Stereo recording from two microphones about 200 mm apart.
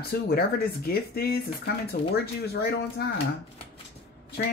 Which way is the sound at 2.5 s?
55° left (ahead or behind).